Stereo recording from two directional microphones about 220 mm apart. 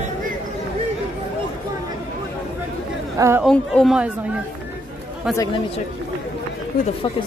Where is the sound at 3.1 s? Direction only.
15° right (ahead or behind).